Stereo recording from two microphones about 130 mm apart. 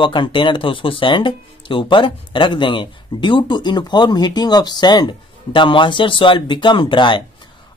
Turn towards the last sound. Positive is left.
turn(degrees=35)  # may be behind; listen again after turning